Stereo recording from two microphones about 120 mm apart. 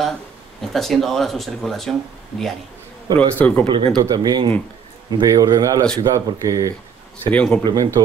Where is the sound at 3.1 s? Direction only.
15° left (ahead or behind).